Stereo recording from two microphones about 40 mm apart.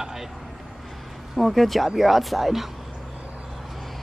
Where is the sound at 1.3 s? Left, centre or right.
Centre.